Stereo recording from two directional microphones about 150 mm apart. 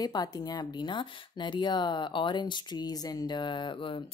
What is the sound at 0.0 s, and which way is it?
A woman's voice, 25° left (ahead or behind).